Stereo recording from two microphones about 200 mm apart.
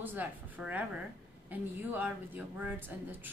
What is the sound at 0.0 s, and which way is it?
Speech, 10° right (ahead or behind).